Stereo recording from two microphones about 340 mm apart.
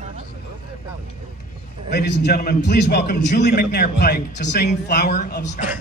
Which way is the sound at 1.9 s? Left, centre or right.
Left.